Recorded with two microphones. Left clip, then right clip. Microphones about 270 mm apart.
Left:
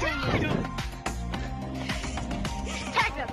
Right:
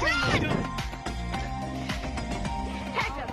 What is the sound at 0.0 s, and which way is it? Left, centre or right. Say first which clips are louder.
Music: right 3 dB; centre.